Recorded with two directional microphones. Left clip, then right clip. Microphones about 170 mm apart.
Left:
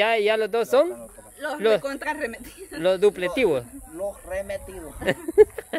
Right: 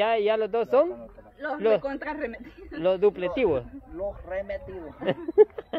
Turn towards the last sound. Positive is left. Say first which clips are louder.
# left 3 dB
turn(degrees=20)  # may be behind; listen again after turning